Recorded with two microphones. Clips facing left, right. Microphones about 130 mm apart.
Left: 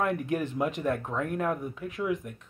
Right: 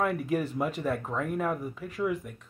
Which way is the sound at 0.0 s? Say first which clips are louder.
Even; centre (ahead or behind).